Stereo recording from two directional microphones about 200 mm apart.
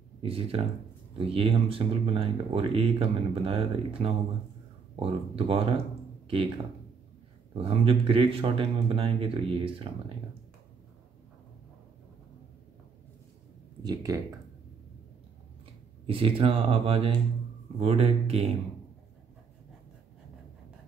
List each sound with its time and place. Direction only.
0.2 s speech: 30° right (ahead or behind)
7.5 s speech: 25° right (ahead or behind)
13.8 s speech: 15° right (ahead or behind)
16.1 s speech: 25° right (ahead or behind)